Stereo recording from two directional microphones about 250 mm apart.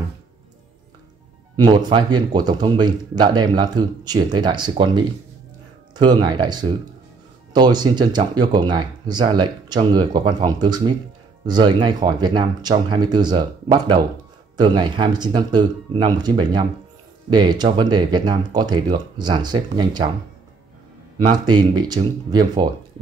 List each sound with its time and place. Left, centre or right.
1.6 s speech: centre
21.5 s speech: centre